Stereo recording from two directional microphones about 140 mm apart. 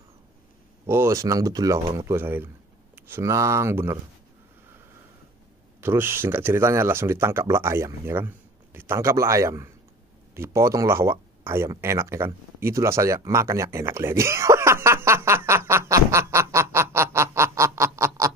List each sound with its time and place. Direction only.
0.8 s speech: 20° right (ahead or behind)
5.8 s speech: 15° right (ahead or behind)
11.7 s a sound: 20° right (ahead or behind)